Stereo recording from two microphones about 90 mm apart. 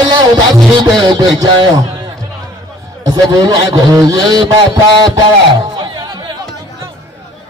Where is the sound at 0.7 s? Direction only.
55° right (ahead or behind).